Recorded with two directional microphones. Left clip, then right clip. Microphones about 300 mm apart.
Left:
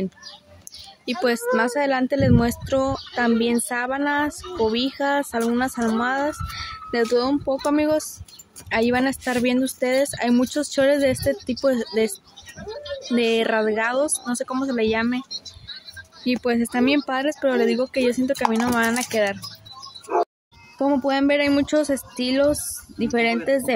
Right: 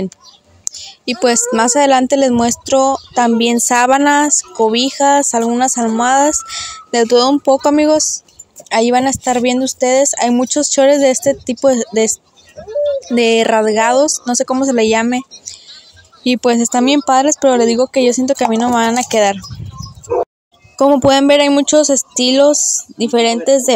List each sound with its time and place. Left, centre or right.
0.7 s a woman's voice: centre
16.3 s a woman's voice: right
20.7 s a woman's voice: right